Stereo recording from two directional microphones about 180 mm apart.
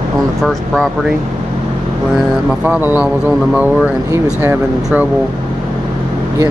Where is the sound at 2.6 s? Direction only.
10° right (ahead or behind).